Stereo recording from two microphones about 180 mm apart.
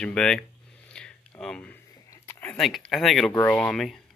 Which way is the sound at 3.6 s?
Centre (ahead or behind).